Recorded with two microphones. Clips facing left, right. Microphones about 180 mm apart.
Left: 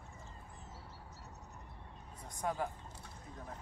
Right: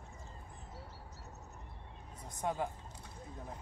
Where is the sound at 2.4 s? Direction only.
20° right (ahead or behind).